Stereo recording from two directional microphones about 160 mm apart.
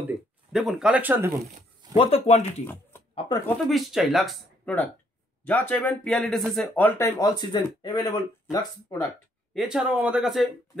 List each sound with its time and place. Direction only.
0.5 s speech: centre (ahead or behind)
2.0 s speech: 40° left (ahead or behind)
2.6 s speech: 10° left (ahead or behind)
3.5 s speech: centre (ahead or behind)
7.1 s speech: 20° left (ahead or behind)
9.5 s speech: 5° right (ahead or behind)